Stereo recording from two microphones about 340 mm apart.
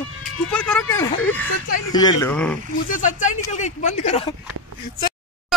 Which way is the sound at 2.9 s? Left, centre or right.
Left.